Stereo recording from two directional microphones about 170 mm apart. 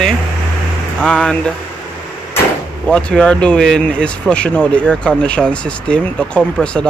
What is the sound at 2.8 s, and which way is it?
Speech, 5° left (ahead or behind).